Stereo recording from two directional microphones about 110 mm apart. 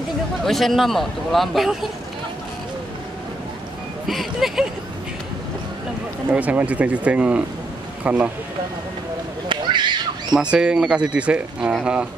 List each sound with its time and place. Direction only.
0.5 s a man's voice: centre (ahead or behind)
4.1 s a man's voice: centre (ahead or behind)
6.3 s speech: 15° right (ahead or behind)
9.5 s children playing: 45° right (ahead or behind)
10.3 s speech: 10° right (ahead or behind)